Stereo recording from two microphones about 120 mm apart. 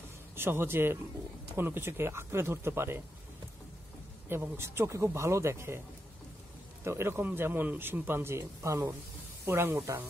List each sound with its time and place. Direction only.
0.4 s speech: 20° right (ahead or behind)
4.3 s speech: 20° right (ahead or behind)
6.8 s speech: 20° right (ahead or behind)